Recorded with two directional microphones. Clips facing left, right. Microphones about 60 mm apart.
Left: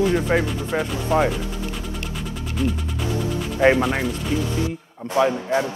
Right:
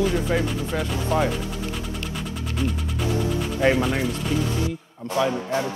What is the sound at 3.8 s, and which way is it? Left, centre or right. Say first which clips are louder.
Speech: left 2 dB; centre.